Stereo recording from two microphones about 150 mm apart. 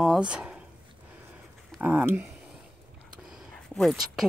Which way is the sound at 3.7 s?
Centre (ahead or behind).